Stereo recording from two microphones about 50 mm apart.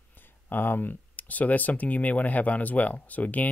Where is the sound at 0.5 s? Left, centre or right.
Left.